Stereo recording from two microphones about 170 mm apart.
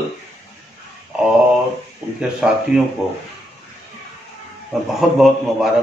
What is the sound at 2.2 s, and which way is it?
Speech, 5° right (ahead or behind).